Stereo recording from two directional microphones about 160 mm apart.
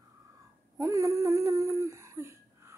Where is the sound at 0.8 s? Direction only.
20° right (ahead or behind).